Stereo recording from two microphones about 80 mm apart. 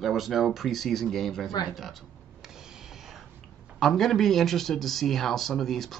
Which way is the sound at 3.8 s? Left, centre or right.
Centre.